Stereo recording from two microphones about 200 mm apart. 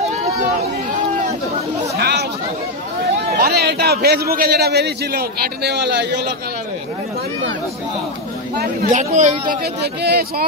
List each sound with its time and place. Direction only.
0.0 s chatter: 35° right (ahead or behind)
2.0 s chatter: 55° right (ahead or behind)
3.3 s a man's voice: 50° right (ahead or behind)
8.5 s speech: 40° right (ahead or behind)
9.6 s a man's voice: 50° right (ahead or behind)